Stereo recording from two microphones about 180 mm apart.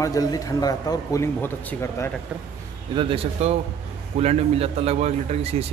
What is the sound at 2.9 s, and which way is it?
A man's voice, 30° right (ahead or behind).